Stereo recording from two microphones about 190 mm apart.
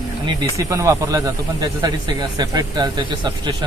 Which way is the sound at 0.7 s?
15° right (ahead or behind).